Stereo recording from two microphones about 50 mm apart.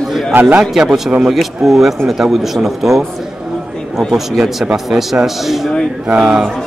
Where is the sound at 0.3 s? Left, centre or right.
Right.